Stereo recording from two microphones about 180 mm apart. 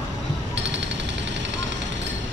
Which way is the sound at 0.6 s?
80° right.